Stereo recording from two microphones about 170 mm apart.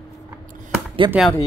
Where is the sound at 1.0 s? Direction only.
25° right (ahead or behind).